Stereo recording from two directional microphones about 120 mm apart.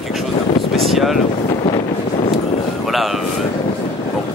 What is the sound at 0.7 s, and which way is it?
Vehicle, centre (ahead or behind).